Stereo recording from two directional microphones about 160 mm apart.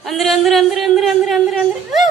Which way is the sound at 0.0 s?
Centre (ahead or behind).